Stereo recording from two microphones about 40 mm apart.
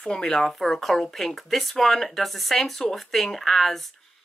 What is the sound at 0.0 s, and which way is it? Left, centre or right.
Speech, left.